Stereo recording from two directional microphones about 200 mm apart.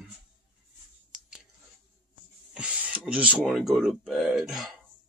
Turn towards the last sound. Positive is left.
turn(degrees=0)  # may be behind; listen again after turning